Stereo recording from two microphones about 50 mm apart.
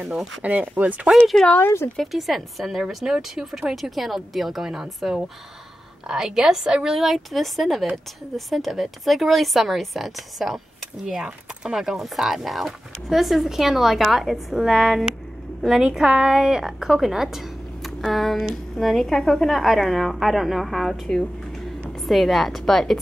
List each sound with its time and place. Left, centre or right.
0.0 s speech: centre
0.4 s speech: right
1.6 s speech: left
2.1 s a woman's voice: centre